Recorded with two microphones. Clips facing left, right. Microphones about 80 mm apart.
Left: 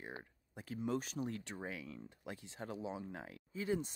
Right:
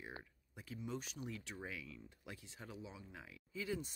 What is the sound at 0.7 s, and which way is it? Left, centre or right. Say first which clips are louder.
Speech: left 7 dB; left.